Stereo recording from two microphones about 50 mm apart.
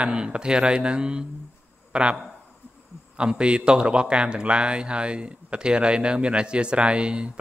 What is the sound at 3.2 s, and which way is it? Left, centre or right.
A man's voice, right.